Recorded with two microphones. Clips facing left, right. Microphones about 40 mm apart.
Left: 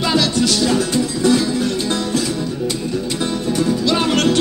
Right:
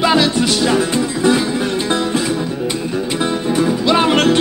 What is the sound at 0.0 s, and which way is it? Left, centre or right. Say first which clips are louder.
Music: right 3 dB; right.